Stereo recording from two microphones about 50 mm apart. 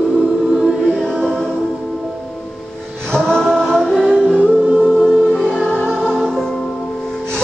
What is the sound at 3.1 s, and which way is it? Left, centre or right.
Music, centre.